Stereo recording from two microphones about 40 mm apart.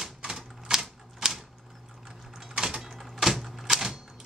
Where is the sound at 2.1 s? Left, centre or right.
Centre.